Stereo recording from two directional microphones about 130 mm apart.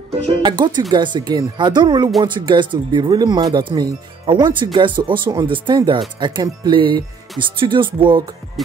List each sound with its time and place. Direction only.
0.4 s speech: 35° right (ahead or behind)
8.6 s music: centre (ahead or behind)